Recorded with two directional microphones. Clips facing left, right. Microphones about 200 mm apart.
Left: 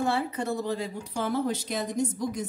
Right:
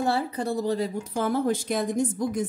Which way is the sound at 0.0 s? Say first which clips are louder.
Right 2 dB; 35° right (ahead or behind).